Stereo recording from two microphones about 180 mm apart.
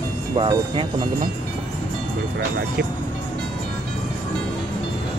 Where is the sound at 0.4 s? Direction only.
25° right (ahead or behind).